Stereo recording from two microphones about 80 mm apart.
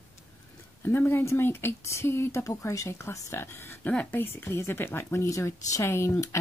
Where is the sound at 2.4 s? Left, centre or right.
Left.